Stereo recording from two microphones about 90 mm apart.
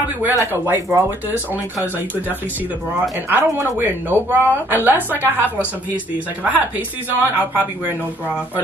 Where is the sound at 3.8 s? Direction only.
25° right (ahead or behind).